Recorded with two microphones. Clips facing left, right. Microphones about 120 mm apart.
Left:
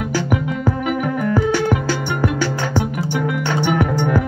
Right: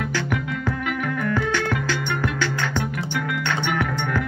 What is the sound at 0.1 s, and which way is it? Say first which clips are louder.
Music: left 5 dB; 35° left (ahead or behind).